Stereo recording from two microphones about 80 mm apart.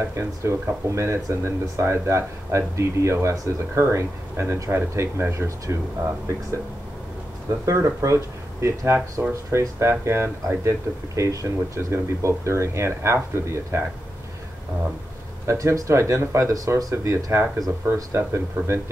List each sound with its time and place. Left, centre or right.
0.1 s speech: right
15.4 s speech: right